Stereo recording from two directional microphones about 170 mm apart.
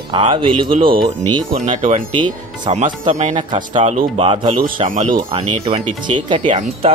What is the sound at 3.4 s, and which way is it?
Speech, 25° right (ahead or behind).